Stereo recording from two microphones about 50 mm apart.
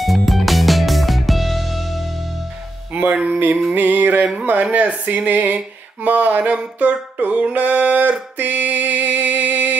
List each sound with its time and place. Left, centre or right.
0.0 s music: centre
2.9 s speech: right
6.8 s music: right
7.5 s a sound: right